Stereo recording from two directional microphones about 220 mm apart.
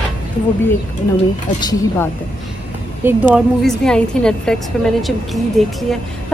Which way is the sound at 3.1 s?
5° right (ahead or behind).